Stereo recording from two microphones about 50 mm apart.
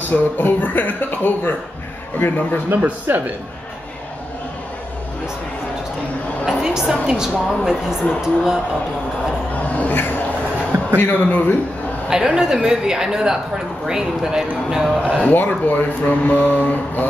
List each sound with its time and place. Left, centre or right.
0.1 s speech: left
2.7 s speech: right
6.4 s a woman's voice: centre
9.8 s speech: left
12.1 s a woman's voice: centre
15.2 s speech: left